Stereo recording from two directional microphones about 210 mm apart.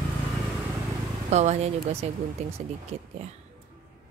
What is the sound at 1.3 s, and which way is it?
Speech, 30° right (ahead or behind).